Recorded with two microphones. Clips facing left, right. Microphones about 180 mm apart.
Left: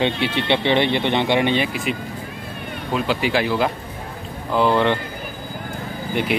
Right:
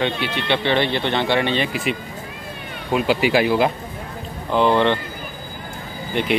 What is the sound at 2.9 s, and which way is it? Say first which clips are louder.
Speech: right 3 dB; 10° right (ahead or behind).